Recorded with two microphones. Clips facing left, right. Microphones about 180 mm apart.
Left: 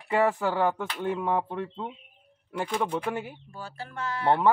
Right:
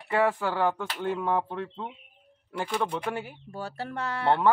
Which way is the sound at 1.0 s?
20° left (ahead or behind).